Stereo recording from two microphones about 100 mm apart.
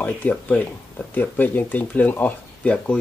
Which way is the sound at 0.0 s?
15° left (ahead or behind).